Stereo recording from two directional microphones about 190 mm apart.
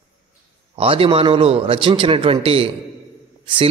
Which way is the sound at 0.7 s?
30° right (ahead or behind).